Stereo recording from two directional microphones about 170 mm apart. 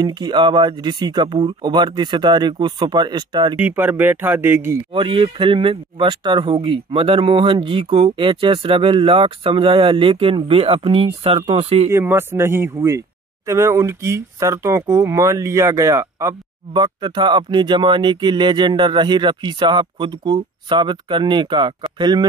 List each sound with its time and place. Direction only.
0.0 s speech: 25° right (ahead or behind)
3.5 s speech: 10° right (ahead or behind)
4.9 s speech: 30° right (ahead or behind)
11.9 s speech: 15° right (ahead or behind)